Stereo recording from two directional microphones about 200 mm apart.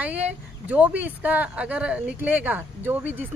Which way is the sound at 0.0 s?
10° right (ahead or behind).